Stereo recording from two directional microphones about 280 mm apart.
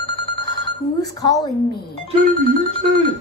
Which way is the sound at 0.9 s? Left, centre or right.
Centre.